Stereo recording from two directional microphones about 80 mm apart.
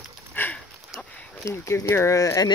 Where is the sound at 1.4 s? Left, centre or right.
Left.